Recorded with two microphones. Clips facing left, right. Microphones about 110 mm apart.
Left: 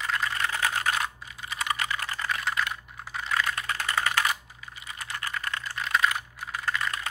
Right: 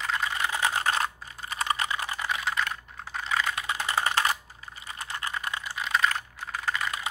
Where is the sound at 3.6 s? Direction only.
15° right (ahead or behind).